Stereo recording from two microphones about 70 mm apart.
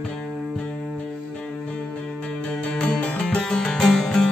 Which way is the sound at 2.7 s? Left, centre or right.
Centre.